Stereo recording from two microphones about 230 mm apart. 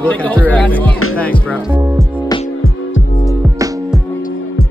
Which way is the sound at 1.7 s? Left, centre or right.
Centre.